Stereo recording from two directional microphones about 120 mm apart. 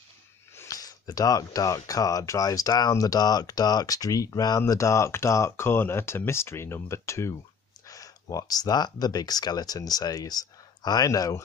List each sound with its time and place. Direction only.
0.6 s speech: 30° left (ahead or behind)